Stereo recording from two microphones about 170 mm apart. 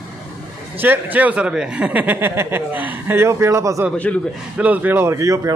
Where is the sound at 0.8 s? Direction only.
10° right (ahead or behind).